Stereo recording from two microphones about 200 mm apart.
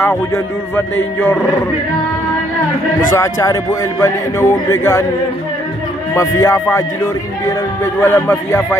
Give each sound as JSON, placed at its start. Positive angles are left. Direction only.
{"t": 0.0, "sound": "speech", "side_deg": 10}
{"t": 3.1, "sound": "speech", "side_deg": 15}
{"t": 6.1, "sound": "speech", "side_deg": 15}